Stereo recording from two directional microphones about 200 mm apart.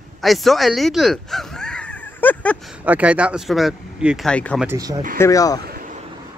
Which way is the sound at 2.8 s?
5° right (ahead or behind).